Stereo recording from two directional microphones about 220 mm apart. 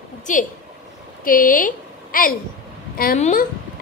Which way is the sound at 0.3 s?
35° left (ahead or behind).